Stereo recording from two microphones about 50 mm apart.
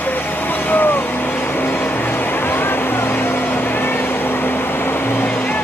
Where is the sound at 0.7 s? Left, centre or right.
Left.